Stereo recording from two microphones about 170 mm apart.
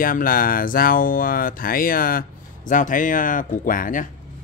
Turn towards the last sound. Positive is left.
turn(degrees=55)  # may be behind; listen again after turning